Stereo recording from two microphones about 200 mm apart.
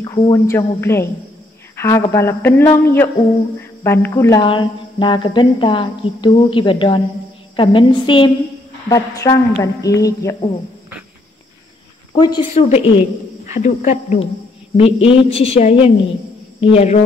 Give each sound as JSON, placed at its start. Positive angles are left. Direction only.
{"t": 0.0, "sound": "a man's voice", "side_deg": 15}
{"t": 12.2, "sound": "a woman's voice", "side_deg": 20}
{"t": 12.5, "sound": "speech", "side_deg": 35}